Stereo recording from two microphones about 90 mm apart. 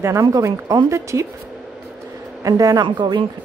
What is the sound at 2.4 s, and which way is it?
Speech, 40° right (ahead or behind).